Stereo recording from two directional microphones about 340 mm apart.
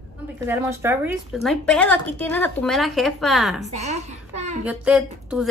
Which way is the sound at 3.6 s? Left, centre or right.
Centre.